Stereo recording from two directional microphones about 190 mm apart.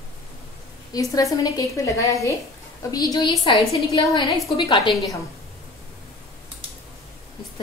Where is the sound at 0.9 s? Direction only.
20° left (ahead or behind).